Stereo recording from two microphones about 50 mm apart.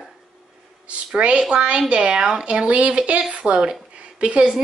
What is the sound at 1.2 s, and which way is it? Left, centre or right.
A woman's voice, centre.